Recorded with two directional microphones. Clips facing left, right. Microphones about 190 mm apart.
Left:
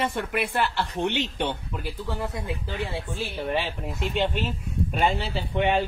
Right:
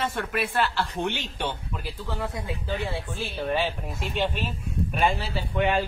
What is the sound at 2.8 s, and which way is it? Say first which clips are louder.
A man's voice: left 1 dB; 15° left (ahead or behind).